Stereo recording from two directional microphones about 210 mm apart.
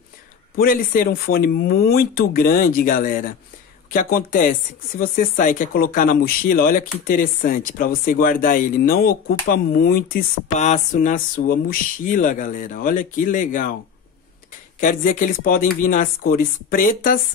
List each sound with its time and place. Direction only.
0.6 s speech: 40° left (ahead or behind)
14.8 s speech: 40° left (ahead or behind)